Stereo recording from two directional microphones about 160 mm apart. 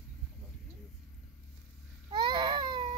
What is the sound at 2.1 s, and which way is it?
Baby cry, 30° right (ahead or behind).